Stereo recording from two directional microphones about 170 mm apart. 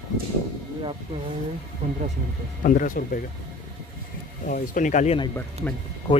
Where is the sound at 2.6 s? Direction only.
50° left (ahead or behind).